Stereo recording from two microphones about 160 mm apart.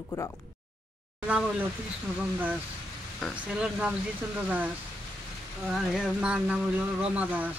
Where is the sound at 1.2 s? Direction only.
10° right (ahead or behind).